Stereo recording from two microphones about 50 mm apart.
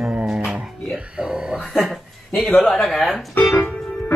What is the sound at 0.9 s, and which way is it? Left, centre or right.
Speech, centre.